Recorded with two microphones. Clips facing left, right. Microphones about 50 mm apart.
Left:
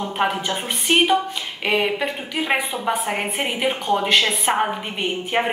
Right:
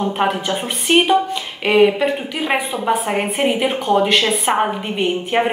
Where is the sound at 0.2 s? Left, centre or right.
Centre.